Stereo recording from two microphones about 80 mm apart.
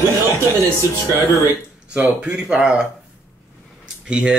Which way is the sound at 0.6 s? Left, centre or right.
Right.